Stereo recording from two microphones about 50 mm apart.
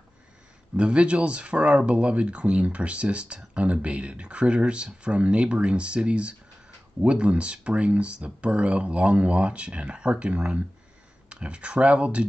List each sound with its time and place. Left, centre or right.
0.7 s speech: right